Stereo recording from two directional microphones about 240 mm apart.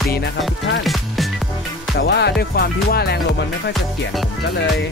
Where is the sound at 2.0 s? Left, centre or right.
Left.